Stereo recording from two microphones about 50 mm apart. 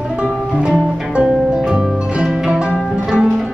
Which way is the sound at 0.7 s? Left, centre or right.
Centre.